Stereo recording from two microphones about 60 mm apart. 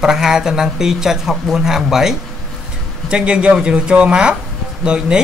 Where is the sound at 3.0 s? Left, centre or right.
Centre.